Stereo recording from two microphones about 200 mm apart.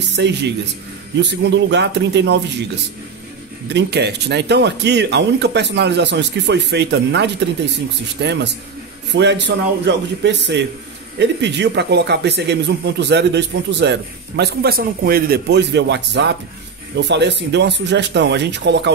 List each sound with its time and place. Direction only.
0.1 s speech: 60° right (ahead or behind)